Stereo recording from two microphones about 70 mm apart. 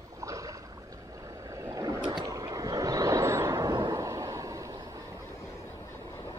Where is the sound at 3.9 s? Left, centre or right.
Right.